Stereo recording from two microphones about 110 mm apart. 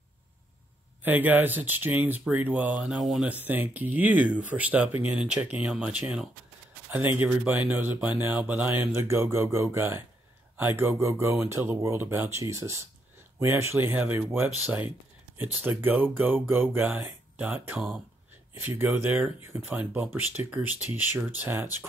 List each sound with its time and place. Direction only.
1.0 s speech: 15° right (ahead or behind)
15.6 s speech: 20° right (ahead or behind)